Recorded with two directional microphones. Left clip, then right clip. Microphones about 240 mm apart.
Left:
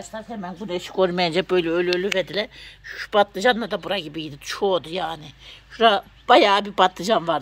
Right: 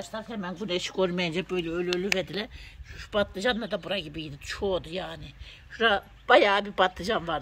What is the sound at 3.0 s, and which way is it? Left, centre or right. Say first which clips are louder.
Speech: left 9 dB; centre.